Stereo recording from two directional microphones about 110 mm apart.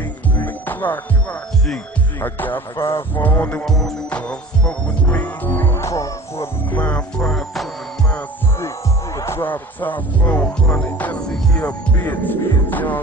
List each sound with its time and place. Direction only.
0.4 s music: 15° left (ahead or behind)
2.2 s music: 15° left (ahead or behind)
3.6 s music: 5° left (ahead or behind); by 6.8 s 25° left (ahead or behind)
6.8 s music: 10° left (ahead or behind)
8.5 s speech: 25° left (ahead or behind)